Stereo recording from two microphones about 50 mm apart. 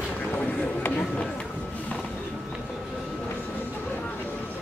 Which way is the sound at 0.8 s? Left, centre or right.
Left.